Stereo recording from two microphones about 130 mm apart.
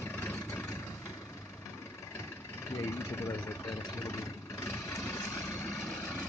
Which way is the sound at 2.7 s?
20° left (ahead or behind).